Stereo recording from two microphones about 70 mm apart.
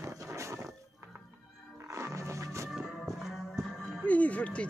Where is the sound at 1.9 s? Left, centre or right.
Right.